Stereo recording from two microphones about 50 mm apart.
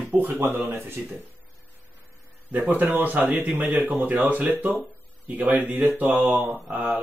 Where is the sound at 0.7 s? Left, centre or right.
Right.